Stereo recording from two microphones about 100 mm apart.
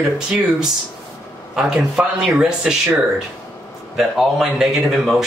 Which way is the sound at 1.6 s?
5° right (ahead or behind).